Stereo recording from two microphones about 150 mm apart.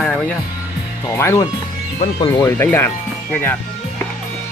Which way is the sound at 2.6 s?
15° left (ahead or behind).